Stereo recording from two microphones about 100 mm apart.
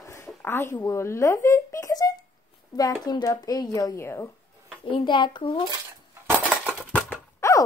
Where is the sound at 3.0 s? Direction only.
40° left (ahead or behind).